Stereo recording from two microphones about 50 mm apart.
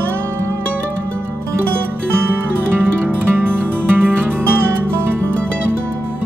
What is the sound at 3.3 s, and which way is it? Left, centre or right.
Music, right.